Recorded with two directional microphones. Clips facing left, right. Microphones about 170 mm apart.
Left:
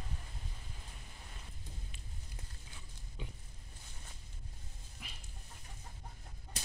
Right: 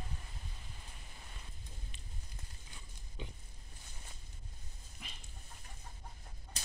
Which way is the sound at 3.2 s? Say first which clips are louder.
Right 1 dB; centre (ahead or behind).